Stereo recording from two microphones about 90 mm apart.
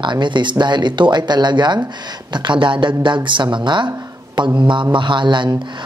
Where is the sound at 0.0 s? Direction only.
60° right (ahead or behind).